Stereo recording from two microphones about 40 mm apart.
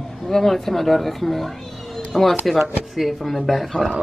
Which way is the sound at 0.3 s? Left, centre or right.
Centre.